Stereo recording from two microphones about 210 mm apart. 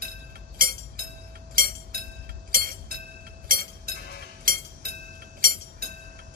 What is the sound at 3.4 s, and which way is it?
Train, 45° right (ahead or behind).